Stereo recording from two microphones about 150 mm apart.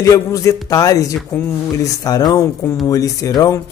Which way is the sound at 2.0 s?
25° left (ahead or behind).